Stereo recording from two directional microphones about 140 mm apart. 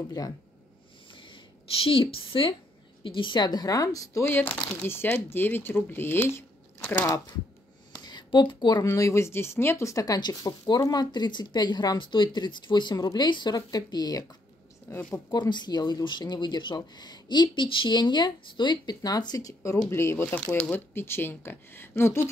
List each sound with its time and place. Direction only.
0.2 s speech: 30° left (ahead or behind)
1.1 s a sound: 40° left (ahead or behind)
3.0 s speech: 35° left (ahead or behind); by 7.1 s 15° left (ahead or behind)
7.9 s speech: 30° left (ahead or behind)
14.9 s speech: 15° left (ahead or behind)
15.3 s speech: 30° left (ahead or behind)